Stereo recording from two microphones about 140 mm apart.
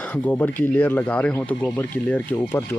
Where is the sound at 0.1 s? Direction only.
10° left (ahead or behind).